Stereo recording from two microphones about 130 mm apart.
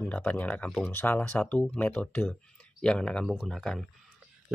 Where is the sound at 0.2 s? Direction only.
15° left (ahead or behind).